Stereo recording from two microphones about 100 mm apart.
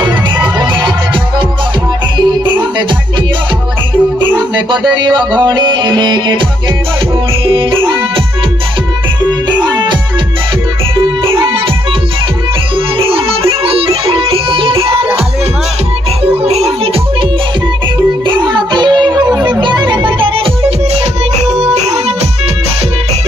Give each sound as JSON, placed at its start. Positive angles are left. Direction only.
{"t": 0.6, "sound": "music", "side_deg": -50}
{"t": 2.1, "sound": "music", "side_deg": -50}
{"t": 4.6, "sound": "music", "side_deg": -45}
{"t": 7.4, "sound": "music", "side_deg": -60}
{"t": 9.2, "sound": "music", "side_deg": -50}
{"t": 11.2, "sound": "music", "side_deg": -60}
{"t": 12.7, "sound": "music", "side_deg": -65}
{"t": 16.4, "sound": "music", "side_deg": -90}
{"t": 18.2, "sound": "music", "side_deg": -50}
{"t": 21.4, "sound": "music", "side_deg": -90}